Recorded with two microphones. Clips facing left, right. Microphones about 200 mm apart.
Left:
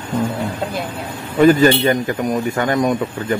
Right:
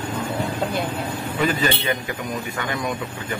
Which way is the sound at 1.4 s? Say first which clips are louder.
Left 12 dB; 45° left (ahead or behind).